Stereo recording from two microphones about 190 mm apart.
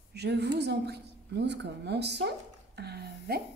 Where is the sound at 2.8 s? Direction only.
55° right (ahead or behind).